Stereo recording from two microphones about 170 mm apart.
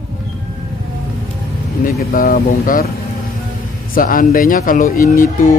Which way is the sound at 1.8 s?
55° left (ahead or behind).